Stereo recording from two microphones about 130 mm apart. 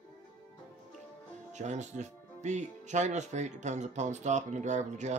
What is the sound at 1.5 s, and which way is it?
Speech, 65° right (ahead or behind).